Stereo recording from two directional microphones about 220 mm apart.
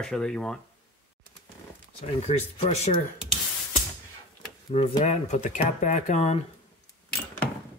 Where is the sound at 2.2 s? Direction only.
30° left (ahead or behind).